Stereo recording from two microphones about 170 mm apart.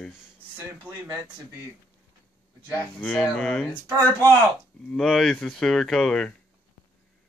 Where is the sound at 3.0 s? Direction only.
5° left (ahead or behind).